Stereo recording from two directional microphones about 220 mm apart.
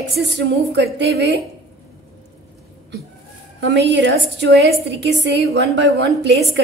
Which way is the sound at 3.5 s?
55° right (ahead or behind).